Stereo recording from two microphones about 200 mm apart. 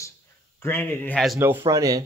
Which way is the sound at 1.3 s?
10° right (ahead or behind).